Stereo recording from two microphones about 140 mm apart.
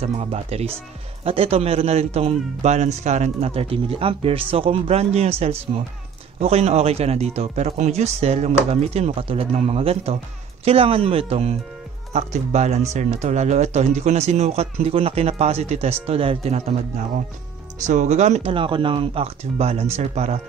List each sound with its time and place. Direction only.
0.0 s speech: 50° right (ahead or behind)
18.5 s speech: 35° right (ahead or behind)